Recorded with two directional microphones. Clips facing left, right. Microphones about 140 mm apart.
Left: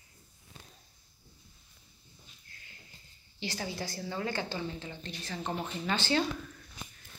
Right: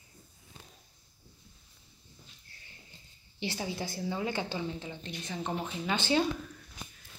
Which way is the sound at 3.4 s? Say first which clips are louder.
Right 2 dB; 20° right (ahead or behind).